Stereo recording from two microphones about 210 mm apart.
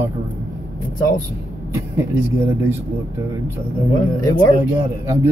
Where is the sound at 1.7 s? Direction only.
10° right (ahead or behind).